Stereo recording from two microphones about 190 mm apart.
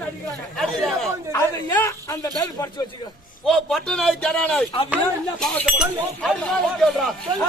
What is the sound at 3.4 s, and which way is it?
Speech, centre (ahead or behind).